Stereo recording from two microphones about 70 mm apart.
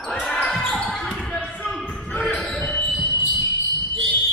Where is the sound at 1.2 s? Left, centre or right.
Centre.